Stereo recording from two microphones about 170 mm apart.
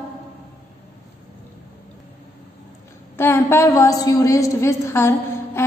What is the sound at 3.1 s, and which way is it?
A woman's voice, 15° left (ahead or behind).